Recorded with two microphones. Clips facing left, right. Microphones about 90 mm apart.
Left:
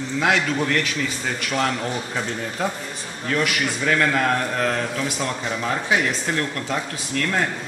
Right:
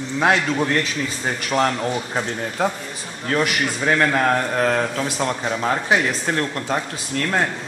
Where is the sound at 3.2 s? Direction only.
35° right (ahead or behind).